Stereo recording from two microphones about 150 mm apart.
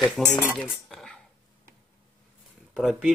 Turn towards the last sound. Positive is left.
turn(degrees=0)  # may be behind; listen again after turning